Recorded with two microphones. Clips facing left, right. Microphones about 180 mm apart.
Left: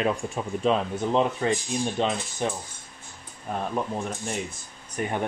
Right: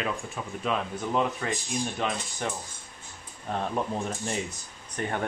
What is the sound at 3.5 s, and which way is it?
Speech, centre (ahead or behind).